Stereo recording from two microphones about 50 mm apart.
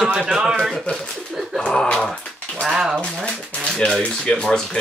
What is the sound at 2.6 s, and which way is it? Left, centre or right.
Speech, centre.